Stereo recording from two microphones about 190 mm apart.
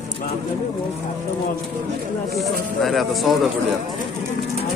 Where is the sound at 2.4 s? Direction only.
Centre (ahead or behind).